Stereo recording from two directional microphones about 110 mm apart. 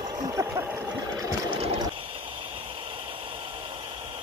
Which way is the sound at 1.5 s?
65° right (ahead or behind).